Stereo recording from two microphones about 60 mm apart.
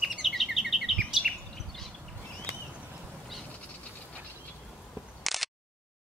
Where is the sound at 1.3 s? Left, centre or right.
Centre.